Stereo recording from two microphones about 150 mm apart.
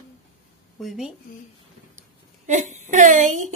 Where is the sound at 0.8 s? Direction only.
Centre (ahead or behind).